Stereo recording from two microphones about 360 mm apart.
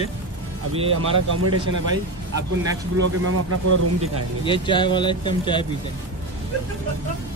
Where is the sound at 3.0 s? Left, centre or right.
Right.